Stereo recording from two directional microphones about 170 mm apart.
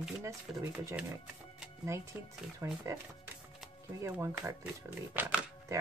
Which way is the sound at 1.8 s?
15° right (ahead or behind).